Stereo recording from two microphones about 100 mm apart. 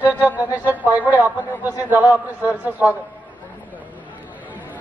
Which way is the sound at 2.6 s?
15° right (ahead or behind).